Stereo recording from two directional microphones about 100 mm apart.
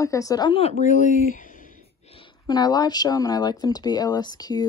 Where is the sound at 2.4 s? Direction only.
45° left (ahead or behind).